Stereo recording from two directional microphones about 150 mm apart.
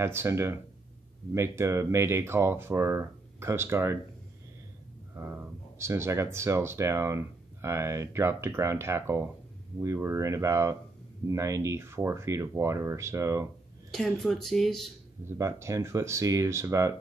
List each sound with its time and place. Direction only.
0.0 s speech: 15° right (ahead or behind)
5.2 s speech: 15° right (ahead or behind)
13.9 s speech: 5° left (ahead or behind)
15.2 s speech: 20° right (ahead or behind)